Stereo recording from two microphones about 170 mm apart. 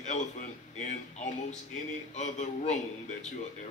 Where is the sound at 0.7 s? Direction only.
45° left (ahead or behind).